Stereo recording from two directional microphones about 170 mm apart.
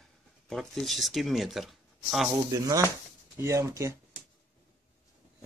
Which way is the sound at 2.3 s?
20° right (ahead or behind).